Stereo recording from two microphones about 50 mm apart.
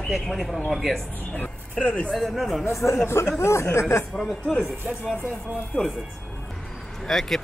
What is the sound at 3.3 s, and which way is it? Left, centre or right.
Speech, left.